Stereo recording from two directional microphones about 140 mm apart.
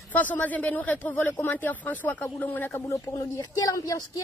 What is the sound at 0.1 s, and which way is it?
A man's voice, 10° left (ahead or behind).